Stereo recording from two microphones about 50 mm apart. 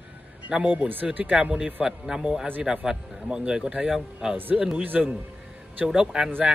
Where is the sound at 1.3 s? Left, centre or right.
Centre.